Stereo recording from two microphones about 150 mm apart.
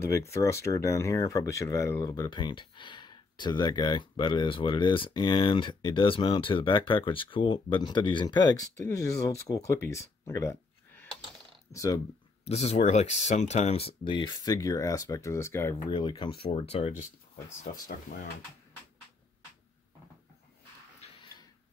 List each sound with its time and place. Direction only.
0.0 s speech: 20° left (ahead or behind)
12.4 s speech: 45° left (ahead or behind); by 15.7 s 15° left (ahead or behind)
15.9 s speech: 30° left (ahead or behind)